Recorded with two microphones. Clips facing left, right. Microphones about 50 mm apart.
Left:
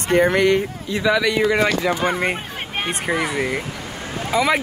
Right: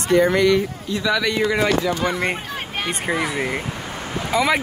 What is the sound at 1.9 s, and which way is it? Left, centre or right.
Speech, left.